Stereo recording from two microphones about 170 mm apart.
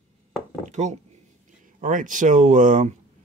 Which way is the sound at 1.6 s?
50° right (ahead or behind).